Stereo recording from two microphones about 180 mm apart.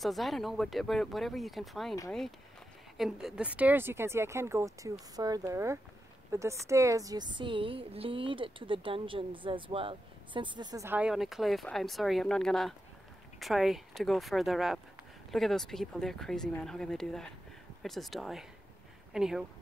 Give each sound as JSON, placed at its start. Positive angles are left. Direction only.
{"t": 0.0, "sound": "a woman's voice", "side_deg": 0}